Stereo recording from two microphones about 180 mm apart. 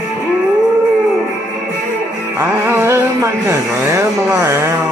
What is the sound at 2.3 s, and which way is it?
Speech, 15° right (ahead or behind).